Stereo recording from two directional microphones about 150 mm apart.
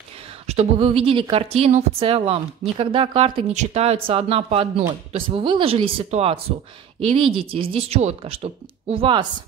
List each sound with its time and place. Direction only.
0.3 s speech: 40° right (ahead or behind)